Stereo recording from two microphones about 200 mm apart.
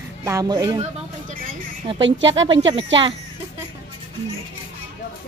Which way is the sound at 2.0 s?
65° right (ahead or behind).